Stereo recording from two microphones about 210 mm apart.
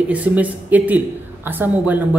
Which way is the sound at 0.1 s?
5° right (ahead or behind).